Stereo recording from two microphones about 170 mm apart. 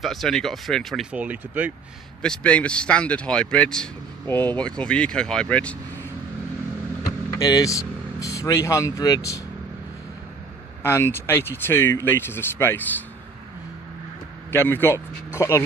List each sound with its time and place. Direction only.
0.0 s speech: centre (ahead or behind)
1.2 s speech: 10° right (ahead or behind)
2.2 s speech: 5° left (ahead or behind)
7.3 s speech: 20° left (ahead or behind)
10.8 s speech: 15° left (ahead or behind)
14.5 s speech: 10° left (ahead or behind)